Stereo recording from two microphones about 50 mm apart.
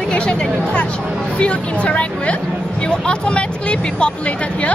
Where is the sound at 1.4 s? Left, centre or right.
Left.